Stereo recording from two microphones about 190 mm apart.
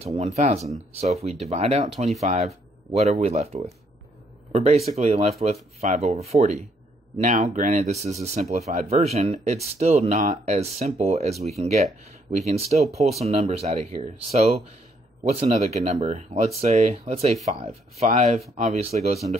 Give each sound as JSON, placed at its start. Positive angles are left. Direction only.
{"t": 0.0, "sound": "speech", "side_deg": -35}